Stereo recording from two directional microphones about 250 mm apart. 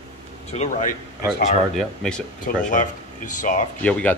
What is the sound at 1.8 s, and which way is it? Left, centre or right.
Speech, centre.